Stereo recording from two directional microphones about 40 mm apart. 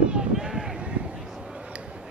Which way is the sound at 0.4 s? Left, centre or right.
Centre.